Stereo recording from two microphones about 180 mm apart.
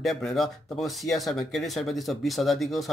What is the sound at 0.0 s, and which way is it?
Speech, centre (ahead or behind).